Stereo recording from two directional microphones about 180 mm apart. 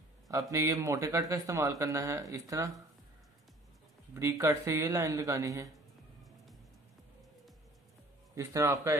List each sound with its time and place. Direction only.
0.3 s speech: 20° right (ahead or behind)
4.1 s speech: 15° right (ahead or behind)
8.4 s speech: 15° right (ahead or behind)